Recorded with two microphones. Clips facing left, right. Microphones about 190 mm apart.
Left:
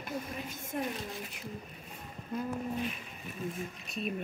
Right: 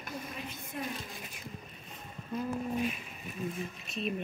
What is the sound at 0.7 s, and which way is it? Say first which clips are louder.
Speech: left 4 dB; 50° left (ahead or behind).